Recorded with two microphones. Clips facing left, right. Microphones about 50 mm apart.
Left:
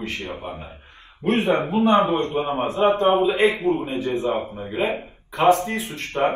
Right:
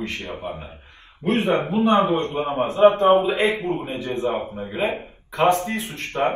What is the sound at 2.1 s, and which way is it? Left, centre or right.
Speech, right.